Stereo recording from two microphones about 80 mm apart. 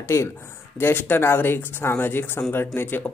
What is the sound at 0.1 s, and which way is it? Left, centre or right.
Speech, left.